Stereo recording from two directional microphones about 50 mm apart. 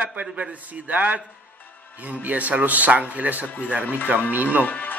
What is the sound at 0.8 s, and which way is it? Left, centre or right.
Speech, right.